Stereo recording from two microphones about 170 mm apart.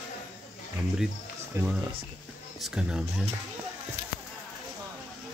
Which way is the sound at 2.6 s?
5° right (ahead or behind).